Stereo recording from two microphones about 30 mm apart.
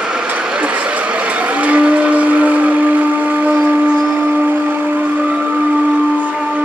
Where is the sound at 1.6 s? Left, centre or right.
Right.